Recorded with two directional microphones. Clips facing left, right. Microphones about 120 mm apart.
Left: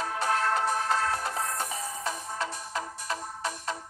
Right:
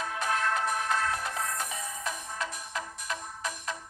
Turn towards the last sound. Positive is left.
turn(degrees=30)  # may be behind; listen again after turning